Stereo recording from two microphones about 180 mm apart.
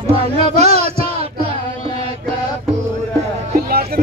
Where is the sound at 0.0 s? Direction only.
35° right (ahead or behind).